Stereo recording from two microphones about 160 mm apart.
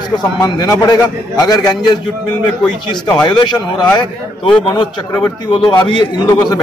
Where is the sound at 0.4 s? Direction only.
20° left (ahead or behind).